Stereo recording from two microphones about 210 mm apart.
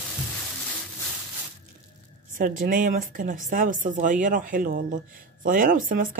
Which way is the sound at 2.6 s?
40° right (ahead or behind).